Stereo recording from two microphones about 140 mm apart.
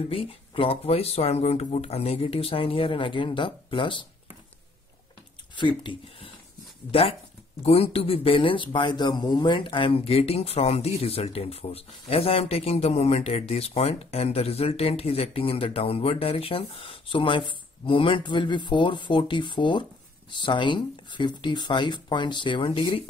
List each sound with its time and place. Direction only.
0.1 s speech: 40° left (ahead or behind)
5.6 s speech: 35° left (ahead or behind)